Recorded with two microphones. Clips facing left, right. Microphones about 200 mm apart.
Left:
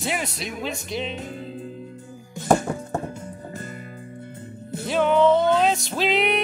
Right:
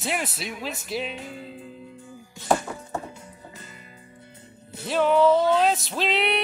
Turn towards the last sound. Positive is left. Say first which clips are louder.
# left 3 dB
turn(degrees=0)  # may be behind; listen again after turning